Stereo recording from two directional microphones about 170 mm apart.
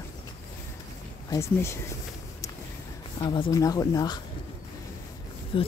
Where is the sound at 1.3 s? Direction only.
15° left (ahead or behind).